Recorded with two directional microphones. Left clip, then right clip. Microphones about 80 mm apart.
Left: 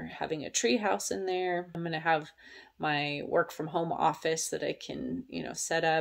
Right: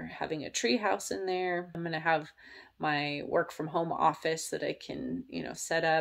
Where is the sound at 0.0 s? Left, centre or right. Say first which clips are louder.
Left 1 dB; left.